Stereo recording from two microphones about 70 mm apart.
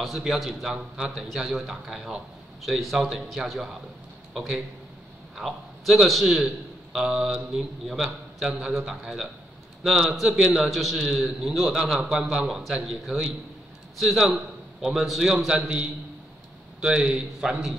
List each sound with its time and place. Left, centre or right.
0.0 s a man's voice: centre
15.4 s a man's voice: centre